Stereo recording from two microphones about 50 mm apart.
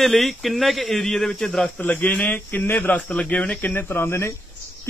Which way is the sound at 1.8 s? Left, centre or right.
Left.